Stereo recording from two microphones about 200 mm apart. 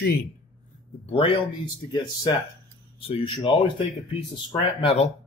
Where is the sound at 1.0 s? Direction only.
30° left (ahead or behind).